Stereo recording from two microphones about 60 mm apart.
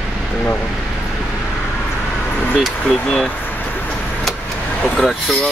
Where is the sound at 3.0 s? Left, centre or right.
Centre.